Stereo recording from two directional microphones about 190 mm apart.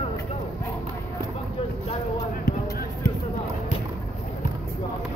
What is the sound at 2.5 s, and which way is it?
Basketball bounce, 50° left (ahead or behind).